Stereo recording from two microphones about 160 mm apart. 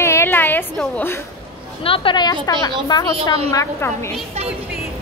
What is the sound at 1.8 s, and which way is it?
A woman's voice, 35° left (ahead or behind).